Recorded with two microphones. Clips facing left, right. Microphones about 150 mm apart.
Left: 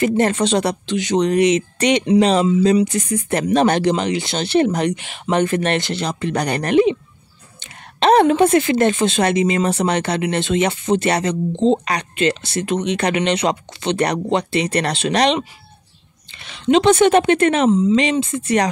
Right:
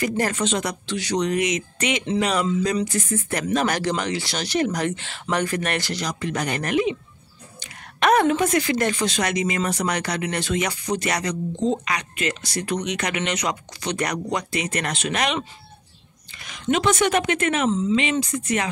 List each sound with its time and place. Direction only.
0.0 s a woman's voice: 25° left (ahead or behind)
0.8 s a woman's voice: 20° left (ahead or behind)
1.2 s a woman's voice: 30° left (ahead or behind)
16.6 s a woman's voice: 25° left (ahead or behind)
17.6 s a woman's voice: 15° left (ahead or behind); by 18.7 s 30° left (ahead or behind)